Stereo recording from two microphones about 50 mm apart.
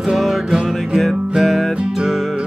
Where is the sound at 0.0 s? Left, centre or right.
Centre.